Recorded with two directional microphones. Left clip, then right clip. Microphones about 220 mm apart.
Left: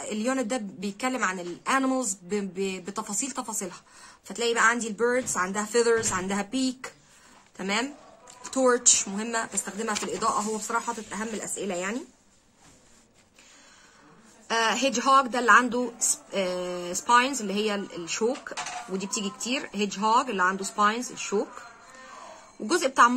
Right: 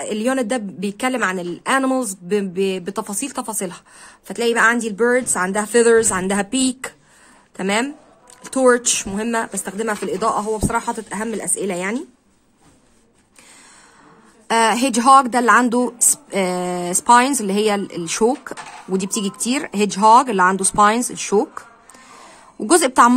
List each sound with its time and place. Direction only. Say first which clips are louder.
0.1 s a woman's voice: right 8 dB; 45° right (ahead or behind)
14.5 s a woman's voice: right 8 dB; 50° right (ahead or behind)
22.7 s a woman's voice: right 8 dB; 50° right (ahead or behind)